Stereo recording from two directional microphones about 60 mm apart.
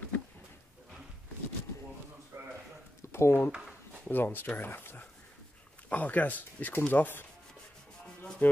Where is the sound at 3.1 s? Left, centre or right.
Left.